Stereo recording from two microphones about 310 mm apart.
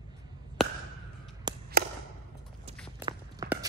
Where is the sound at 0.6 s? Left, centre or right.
Centre.